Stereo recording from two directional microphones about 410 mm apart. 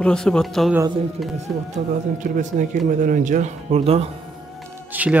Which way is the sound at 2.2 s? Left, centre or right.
Centre.